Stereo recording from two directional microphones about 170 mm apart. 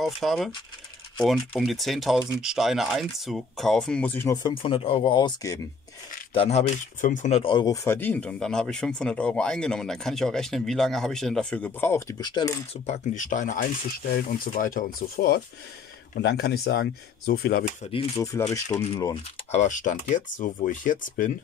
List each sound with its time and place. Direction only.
0.0 s speech: centre (ahead or behind); by 5.6 s 25° left (ahead or behind)
6.3 s speech: 35° left (ahead or behind)
7.0 s speech: 50° left (ahead or behind); by 12.2 s 15° left (ahead or behind)
12.2 s speech: 25° left (ahead or behind)
12.8 s speech: 45° left (ahead or behind)
18.1 s speech: 20° left (ahead or behind)
19.5 s speech: 45° left (ahead or behind)